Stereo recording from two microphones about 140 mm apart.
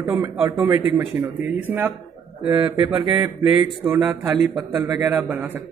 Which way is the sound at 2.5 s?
35° right (ahead or behind).